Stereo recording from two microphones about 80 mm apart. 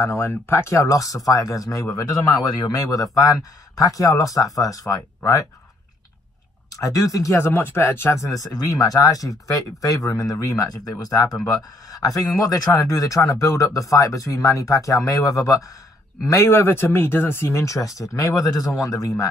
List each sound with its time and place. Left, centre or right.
0.0 s speech: left
6.7 s speech: left
16.3 s speech: left